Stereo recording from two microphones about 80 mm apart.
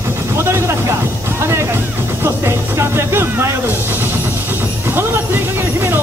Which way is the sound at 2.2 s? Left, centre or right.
Right.